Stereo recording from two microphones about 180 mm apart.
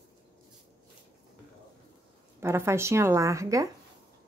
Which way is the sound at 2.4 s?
15° right (ahead or behind).